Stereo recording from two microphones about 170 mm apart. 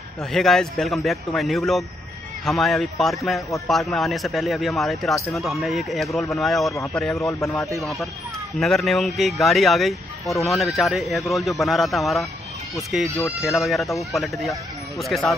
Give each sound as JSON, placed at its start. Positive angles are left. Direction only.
{"t": 0.2, "sound": "speech", "side_deg": 0}
{"t": 6.7, "sound": "a man's voice", "side_deg": 15}
{"t": 7.0, "sound": "speech", "side_deg": 0}
{"t": 7.2, "sound": "a man's voice", "side_deg": 15}
{"t": 7.7, "sound": "speech", "side_deg": 0}